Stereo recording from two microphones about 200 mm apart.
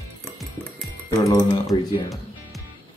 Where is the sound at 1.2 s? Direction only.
15° left (ahead or behind).